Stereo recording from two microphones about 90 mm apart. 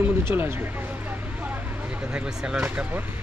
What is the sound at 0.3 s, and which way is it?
Speech, 25° right (ahead or behind).